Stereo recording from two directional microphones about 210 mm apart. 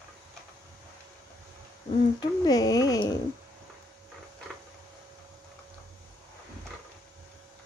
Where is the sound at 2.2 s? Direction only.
20° left (ahead or behind).